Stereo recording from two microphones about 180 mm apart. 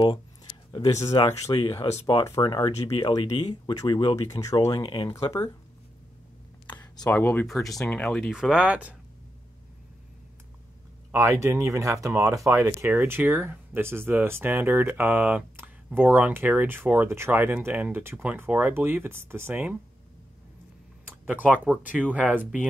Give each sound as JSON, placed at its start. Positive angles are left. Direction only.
{"t": 0.7, "sound": "speech", "side_deg": 20}
{"t": 3.1, "sound": "speech", "side_deg": 20}
{"t": 4.7, "sound": "speech", "side_deg": 30}
{"t": 7.1, "sound": "speech", "side_deg": 10}
{"t": 11.1, "sound": "speech", "side_deg": -15}
{"t": 22.1, "sound": "speech", "side_deg": -10}